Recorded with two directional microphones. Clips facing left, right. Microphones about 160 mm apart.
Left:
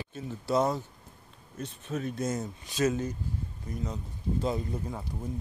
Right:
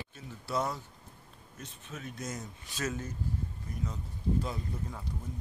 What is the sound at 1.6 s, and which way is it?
Speech, 35° left (ahead or behind).